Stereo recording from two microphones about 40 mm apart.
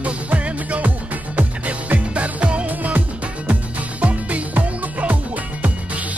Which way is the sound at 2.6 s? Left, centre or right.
Right.